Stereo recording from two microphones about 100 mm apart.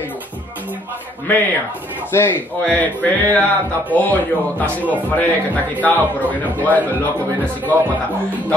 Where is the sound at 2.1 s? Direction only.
25° left (ahead or behind).